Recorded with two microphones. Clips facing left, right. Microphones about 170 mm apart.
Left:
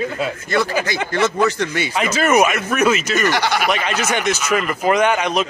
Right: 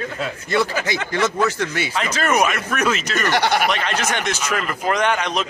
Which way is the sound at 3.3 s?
55° right (ahead or behind).